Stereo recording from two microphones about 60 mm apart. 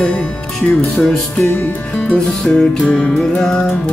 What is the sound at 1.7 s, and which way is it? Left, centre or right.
Music, left.